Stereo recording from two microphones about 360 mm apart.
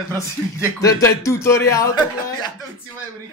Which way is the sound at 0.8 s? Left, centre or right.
Centre.